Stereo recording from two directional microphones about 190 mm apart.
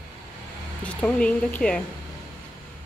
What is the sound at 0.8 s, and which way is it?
Speech, 5° left (ahead or behind).